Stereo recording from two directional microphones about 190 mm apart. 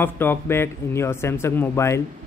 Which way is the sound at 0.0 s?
10° left (ahead or behind).